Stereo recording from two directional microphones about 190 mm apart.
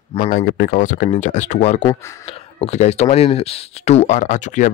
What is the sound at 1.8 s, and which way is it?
Speech, 25° left (ahead or behind).